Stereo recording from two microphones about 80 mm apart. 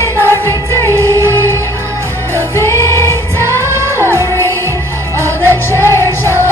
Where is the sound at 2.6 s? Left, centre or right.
Left.